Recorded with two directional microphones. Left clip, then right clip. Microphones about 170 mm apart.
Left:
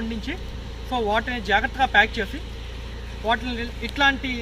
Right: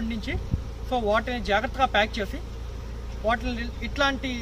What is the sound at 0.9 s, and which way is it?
Speech, 30° right (ahead or behind).